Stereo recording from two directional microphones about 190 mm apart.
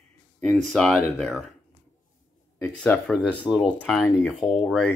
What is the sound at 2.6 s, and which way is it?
Speech, 5° left (ahead or behind).